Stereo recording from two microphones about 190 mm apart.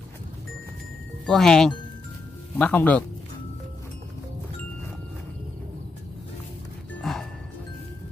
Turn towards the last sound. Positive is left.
turn(degrees=0)  # may be behind; listen again after turning